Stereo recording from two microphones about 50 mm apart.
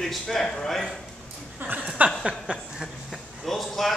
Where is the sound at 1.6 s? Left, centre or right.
Right.